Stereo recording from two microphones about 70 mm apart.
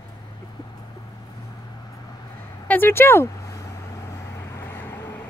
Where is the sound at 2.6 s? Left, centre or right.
Left.